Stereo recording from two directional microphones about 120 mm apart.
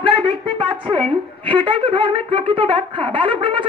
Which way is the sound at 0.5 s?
40° right (ahead or behind).